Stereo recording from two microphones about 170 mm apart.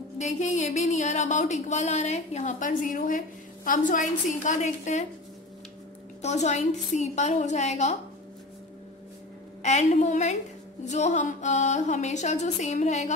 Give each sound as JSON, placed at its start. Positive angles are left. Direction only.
{"t": 0.2, "sound": "speech", "side_deg": 45}
{"t": 6.2, "sound": "speech", "side_deg": 40}
{"t": 9.6, "sound": "a woman's voice", "side_deg": 40}